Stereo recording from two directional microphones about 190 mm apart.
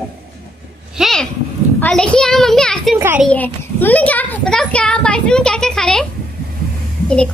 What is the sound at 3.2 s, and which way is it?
A child's voice, 10° left (ahead or behind).